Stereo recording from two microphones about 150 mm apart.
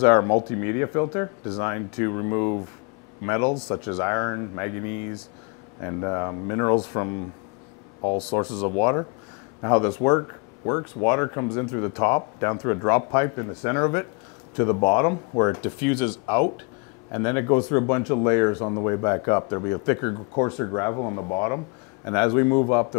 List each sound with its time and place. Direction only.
0.0 s speech: 20° left (ahead or behind)
8.3 s speech: 25° left (ahead or behind)